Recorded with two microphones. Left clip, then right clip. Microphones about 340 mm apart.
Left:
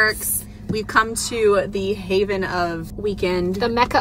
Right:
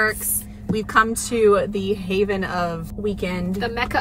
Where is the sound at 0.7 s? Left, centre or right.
Centre.